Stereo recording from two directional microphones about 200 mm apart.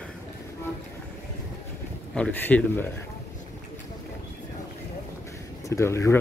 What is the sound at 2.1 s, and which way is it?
Speech, 5° left (ahead or behind).